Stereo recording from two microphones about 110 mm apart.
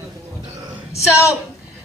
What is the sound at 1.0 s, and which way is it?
Speech, 25° left (ahead or behind).